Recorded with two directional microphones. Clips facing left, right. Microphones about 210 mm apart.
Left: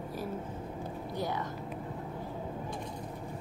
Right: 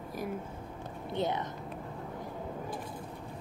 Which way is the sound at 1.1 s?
20° right (ahead or behind).